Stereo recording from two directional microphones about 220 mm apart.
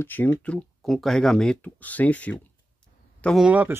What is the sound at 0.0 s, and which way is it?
Speech, 10° left (ahead or behind).